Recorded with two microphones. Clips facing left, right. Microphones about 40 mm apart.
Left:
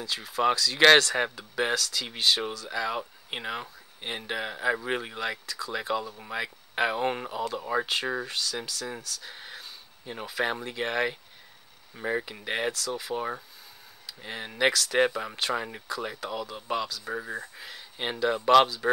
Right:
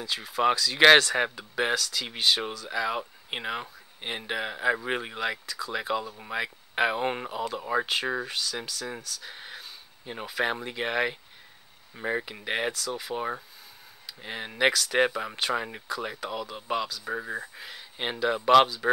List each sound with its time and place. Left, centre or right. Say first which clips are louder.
0.0 s speech: right 1 dB; centre